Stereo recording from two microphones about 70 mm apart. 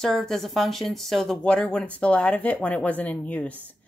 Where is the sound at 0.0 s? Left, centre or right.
Centre.